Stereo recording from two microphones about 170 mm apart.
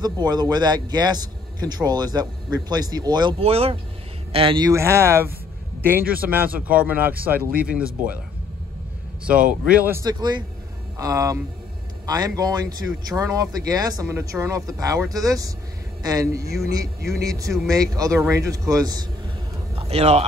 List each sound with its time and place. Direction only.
0.0 s a man's voice: 25° right (ahead or behind); by 7.8 s 10° right (ahead or behind)
9.5 s speech: 10° right (ahead or behind)
10.0 s a man's voice: 25° right (ahead or behind)
19.7 s a sound: 35° right (ahead or behind)